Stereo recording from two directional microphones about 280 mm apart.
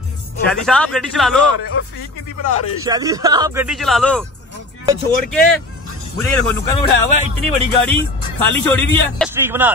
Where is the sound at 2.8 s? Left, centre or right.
Centre.